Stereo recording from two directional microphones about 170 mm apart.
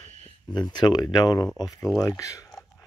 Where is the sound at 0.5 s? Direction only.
25° left (ahead or behind).